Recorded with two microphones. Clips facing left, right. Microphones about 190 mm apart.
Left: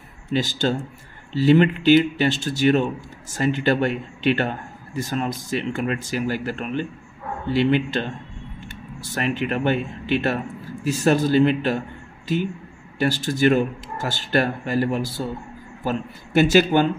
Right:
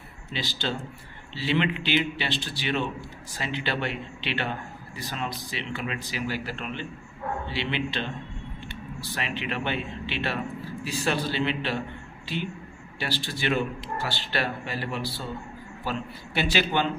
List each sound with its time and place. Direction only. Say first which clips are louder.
0.3 s speech: left 9 dB; 45° left (ahead or behind)